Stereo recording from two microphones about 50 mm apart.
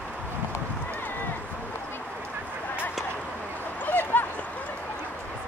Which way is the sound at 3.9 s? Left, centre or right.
Left.